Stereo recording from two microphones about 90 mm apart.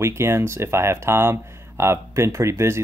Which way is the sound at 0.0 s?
30° right (ahead or behind).